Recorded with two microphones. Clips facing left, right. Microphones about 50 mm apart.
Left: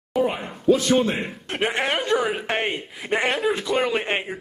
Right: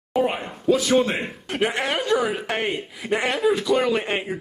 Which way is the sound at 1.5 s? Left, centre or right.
Centre.